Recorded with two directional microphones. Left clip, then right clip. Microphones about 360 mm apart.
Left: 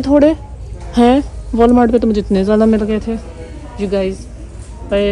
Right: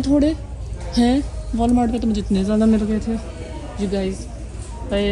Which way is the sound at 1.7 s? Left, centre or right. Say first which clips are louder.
Left 7 dB; centre.